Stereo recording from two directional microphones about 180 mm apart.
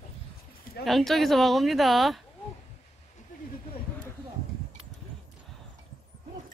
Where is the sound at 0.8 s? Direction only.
Centre (ahead or behind).